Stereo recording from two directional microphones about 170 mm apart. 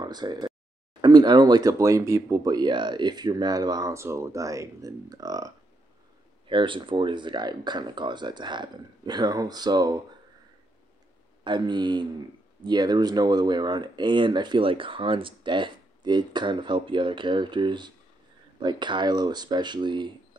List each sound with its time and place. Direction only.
0.0 s speech: 25° right (ahead or behind)
11.4 s speech: 25° right (ahead or behind)